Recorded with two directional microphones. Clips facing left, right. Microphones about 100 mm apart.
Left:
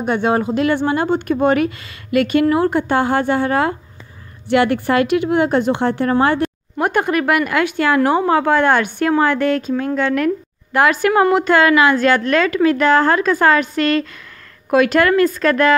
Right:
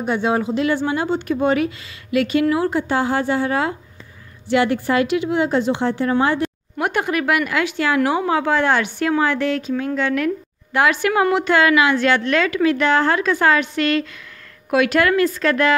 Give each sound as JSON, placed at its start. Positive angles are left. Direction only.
{"t": 0.0, "sound": "a woman's voice", "side_deg": 55}